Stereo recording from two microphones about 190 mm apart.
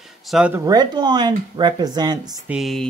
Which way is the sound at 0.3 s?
5° right (ahead or behind).